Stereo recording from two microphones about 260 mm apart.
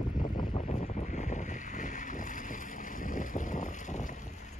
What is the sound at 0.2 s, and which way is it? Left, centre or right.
Boat, left.